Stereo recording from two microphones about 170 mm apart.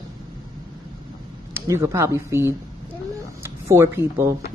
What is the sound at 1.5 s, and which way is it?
Speech, 15° right (ahead or behind).